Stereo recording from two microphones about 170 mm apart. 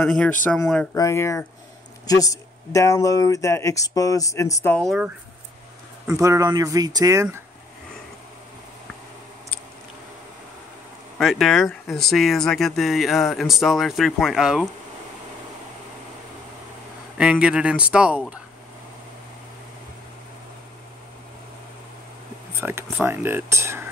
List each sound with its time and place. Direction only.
0.0 s speech: 5° left (ahead or behind)
4.7 s speech: centre (ahead or behind)
6.0 s speech: 20° right (ahead or behind)
11.1 s speech: centre (ahead or behind)
17.2 s speech: 5° right (ahead or behind)
22.6 s speech: 15° right (ahead or behind)